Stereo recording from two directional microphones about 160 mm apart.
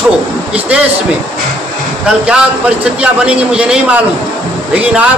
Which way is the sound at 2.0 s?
5° right (ahead or behind).